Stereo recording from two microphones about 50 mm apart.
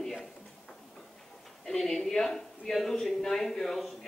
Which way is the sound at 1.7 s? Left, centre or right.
Centre.